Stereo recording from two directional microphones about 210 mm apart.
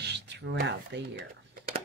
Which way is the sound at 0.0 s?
55° right (ahead or behind).